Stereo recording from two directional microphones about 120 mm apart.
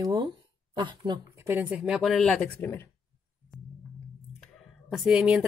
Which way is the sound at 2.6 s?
20° left (ahead or behind).